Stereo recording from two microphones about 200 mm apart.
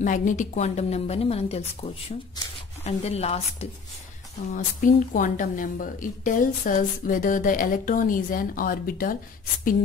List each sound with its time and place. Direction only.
0.0 s a woman's voice: 40° left (ahead or behind)